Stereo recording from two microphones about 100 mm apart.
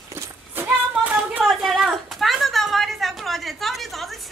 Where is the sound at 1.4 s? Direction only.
Centre (ahead or behind).